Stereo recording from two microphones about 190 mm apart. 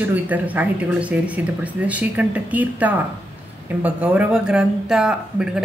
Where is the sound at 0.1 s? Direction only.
10° right (ahead or behind).